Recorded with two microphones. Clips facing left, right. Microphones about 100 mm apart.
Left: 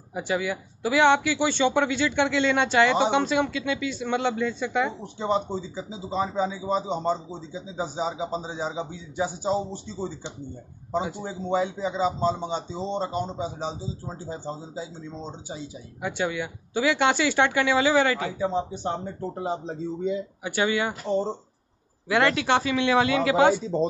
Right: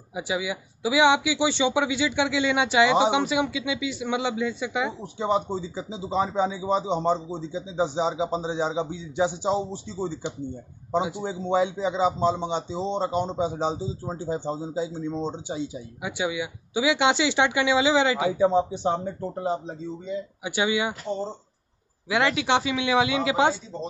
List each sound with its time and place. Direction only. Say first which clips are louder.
0.1 s a man's voice: left 1 dB; 10° right (ahead or behind)
16.0 s speech: left 1 dB; 10° right (ahead or behind)
20.4 s speech: even; 15° right (ahead or behind)
22.1 s speech: left 1 dB; 10° right (ahead or behind)